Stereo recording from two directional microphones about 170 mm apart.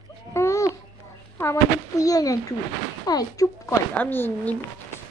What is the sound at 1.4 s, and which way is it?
Speech, 20° left (ahead or behind).